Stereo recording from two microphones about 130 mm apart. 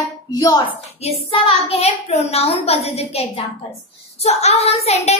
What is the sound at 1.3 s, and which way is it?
A woman's voice, 50° left (ahead or behind).